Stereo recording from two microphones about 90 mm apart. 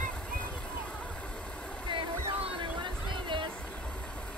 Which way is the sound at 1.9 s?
65° right (ahead or behind).